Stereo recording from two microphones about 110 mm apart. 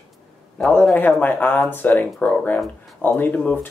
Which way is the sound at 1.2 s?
15° left (ahead or behind).